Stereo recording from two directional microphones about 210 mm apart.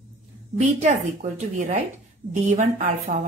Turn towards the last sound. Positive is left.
turn(degrees=-35)  # may be behind; listen again after turning